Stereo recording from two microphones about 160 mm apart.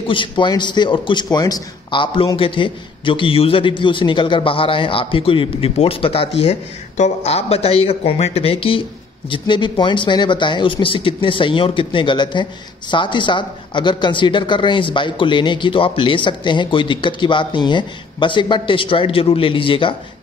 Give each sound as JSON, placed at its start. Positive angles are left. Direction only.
{"t": 0.1, "sound": "speech", "side_deg": 30}